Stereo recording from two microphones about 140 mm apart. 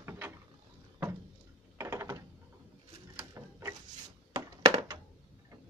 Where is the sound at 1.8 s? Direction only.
20° right (ahead or behind).